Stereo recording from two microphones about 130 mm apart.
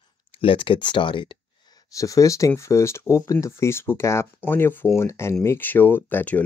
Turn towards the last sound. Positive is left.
turn(degrees=15)  # may be behind; listen again after turning